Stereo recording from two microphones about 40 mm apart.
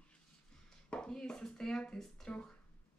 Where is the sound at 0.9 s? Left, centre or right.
Left.